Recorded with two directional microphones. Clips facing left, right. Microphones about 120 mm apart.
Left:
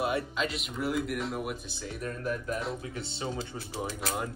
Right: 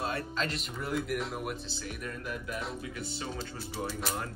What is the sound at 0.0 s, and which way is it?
Speech, 15° left (ahead or behind).